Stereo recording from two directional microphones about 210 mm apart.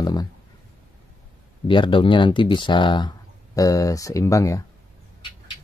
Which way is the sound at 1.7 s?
25° left (ahead or behind).